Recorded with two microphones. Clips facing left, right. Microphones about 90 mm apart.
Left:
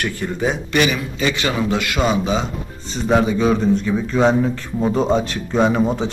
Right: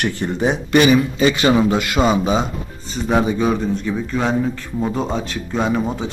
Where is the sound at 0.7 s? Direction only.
30° right (ahead or behind).